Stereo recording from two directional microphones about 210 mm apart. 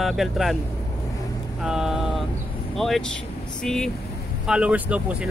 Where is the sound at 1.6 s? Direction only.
5° right (ahead or behind).